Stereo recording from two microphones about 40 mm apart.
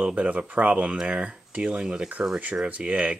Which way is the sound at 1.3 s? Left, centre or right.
Right.